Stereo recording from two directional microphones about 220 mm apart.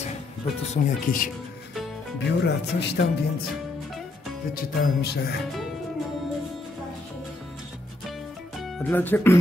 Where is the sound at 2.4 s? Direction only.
50° left (ahead or behind).